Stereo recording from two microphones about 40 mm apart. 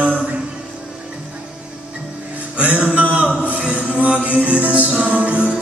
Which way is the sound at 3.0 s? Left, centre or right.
Right.